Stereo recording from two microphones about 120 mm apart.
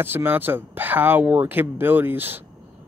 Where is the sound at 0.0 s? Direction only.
20° right (ahead or behind).